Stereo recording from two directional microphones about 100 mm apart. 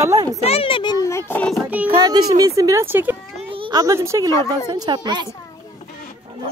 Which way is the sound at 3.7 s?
30° right (ahead or behind).